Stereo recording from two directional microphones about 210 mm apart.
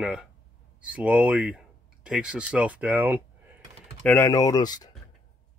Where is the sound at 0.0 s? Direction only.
5° right (ahead or behind).